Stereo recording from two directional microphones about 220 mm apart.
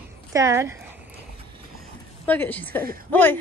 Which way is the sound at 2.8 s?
40° right (ahead or behind).